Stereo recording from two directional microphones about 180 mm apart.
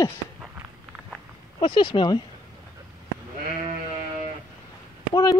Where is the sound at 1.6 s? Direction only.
25° left (ahead or behind).